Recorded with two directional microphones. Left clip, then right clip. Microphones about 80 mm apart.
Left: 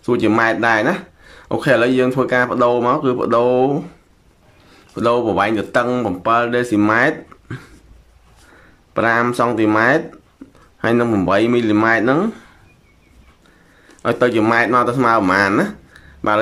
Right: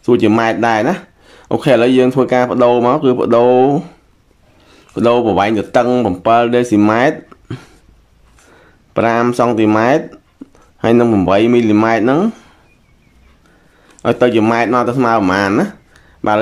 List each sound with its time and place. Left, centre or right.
0.0 s speech: right
8.9 s speech: right
14.0 s speech: right